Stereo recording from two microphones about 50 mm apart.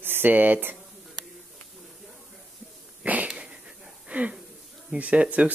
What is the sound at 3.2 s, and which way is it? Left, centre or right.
Wheeze, centre.